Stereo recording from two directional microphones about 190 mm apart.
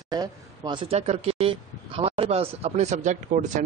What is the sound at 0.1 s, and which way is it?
Speech, 20° right (ahead or behind).